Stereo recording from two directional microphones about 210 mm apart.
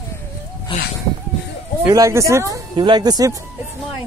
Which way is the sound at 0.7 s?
25° left (ahead or behind).